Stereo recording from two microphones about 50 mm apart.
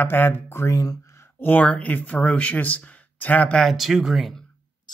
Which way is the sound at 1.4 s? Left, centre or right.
Left.